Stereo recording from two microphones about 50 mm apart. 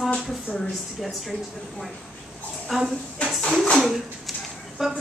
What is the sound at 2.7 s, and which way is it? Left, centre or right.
Speech, centre.